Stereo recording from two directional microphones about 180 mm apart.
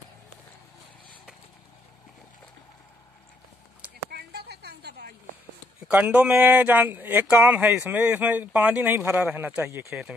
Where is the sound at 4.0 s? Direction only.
65° right (ahead or behind).